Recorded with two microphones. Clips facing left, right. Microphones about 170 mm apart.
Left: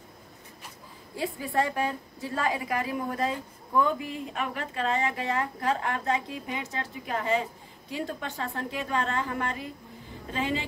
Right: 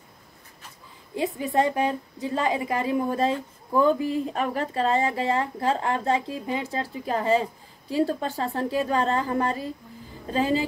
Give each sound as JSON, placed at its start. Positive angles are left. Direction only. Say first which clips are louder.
{"t": 1.1, "sound": "a woman's voice", "louder": "right 4 dB", "side_deg": -20}